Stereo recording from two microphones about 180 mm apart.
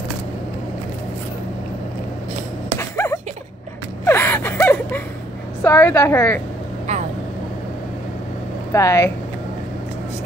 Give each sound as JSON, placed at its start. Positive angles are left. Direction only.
{"t": 2.8, "sound": "a sound", "side_deg": 15}
{"t": 4.0, "sound": "gasp", "side_deg": 15}
{"t": 5.6, "sound": "a woman's voice", "side_deg": 15}
{"t": 6.9, "sound": "vehicle", "side_deg": -40}
{"t": 8.7, "sound": "a woman's voice", "side_deg": 15}